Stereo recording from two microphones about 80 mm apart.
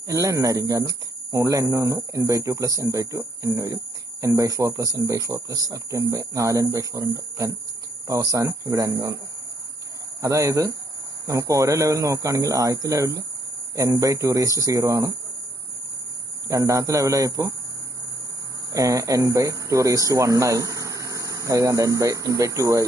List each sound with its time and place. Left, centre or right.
0.1 s speech: right
10.2 s speech: right
16.4 s speech: right
18.7 s speech: right